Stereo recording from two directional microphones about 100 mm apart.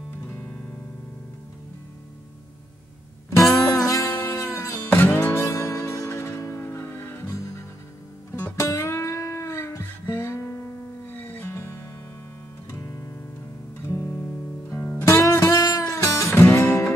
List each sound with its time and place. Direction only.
0.3 s music: 15° left (ahead or behind)
3.5 s music: 30° left (ahead or behind)